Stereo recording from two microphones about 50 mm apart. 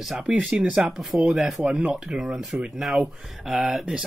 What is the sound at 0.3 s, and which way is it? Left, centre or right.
Speech, centre.